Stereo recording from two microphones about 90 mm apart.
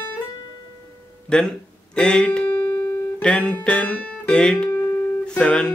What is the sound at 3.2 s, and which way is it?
Speech, 10° left (ahead or behind).